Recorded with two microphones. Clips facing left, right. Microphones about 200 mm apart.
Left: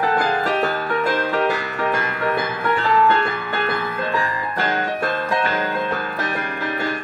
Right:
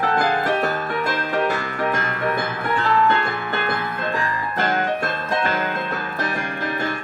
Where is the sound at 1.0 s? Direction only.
45° right (ahead or behind).